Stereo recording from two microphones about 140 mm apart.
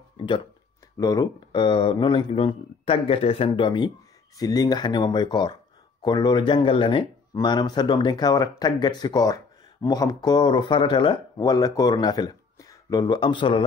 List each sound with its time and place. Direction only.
0.9 s speech: 25° left (ahead or behind)